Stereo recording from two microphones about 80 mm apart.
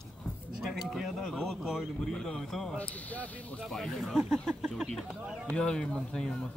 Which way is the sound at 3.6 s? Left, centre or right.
Centre.